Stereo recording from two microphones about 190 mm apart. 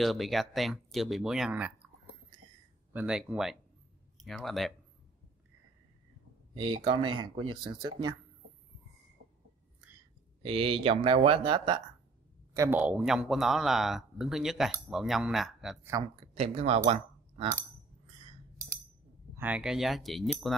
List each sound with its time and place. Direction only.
0.0 s a man's voice: centre (ahead or behind)
2.9 s a man's voice: 5° right (ahead or behind)
6.5 s speech: 25° right (ahead or behind)
10.4 s speech: 30° right (ahead or behind)
12.5 s a man's voice: 10° right (ahead or behind)
16.3 s speech: 35° right (ahead or behind)
19.3 s a man's voice: 10° right (ahead or behind)